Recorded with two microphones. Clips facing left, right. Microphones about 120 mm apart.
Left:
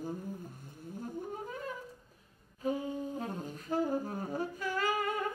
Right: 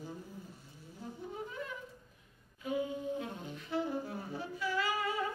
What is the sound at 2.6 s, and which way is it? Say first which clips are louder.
Music: left 3 dB; 40° left (ahead or behind).